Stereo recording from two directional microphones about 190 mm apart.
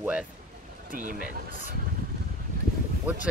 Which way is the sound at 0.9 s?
45° right (ahead or behind).